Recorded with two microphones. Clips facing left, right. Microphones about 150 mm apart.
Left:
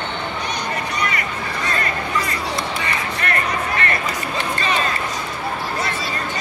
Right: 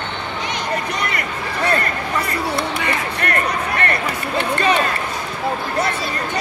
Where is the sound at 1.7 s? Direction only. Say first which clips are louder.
Right 1 dB; 60° right (ahead or behind).